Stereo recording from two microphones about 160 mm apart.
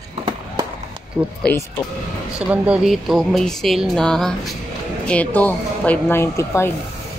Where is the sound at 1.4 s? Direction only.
15° left (ahead or behind).